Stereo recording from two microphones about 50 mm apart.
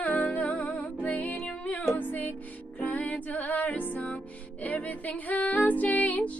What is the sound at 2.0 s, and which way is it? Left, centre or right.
Music, left.